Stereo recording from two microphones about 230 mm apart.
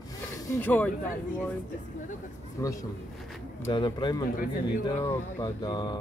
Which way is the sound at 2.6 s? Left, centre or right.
Centre.